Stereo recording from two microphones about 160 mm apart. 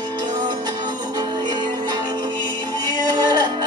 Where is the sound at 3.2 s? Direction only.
25° right (ahead or behind).